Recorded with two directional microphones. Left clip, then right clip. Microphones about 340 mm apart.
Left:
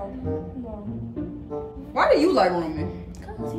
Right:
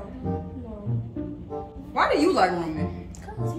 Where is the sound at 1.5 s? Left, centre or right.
Centre.